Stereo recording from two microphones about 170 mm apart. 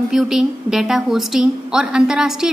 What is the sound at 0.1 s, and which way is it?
A woman's voice, centre (ahead or behind).